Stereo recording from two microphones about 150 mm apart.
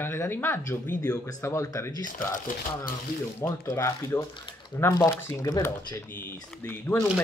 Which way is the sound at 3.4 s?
20° left (ahead or behind).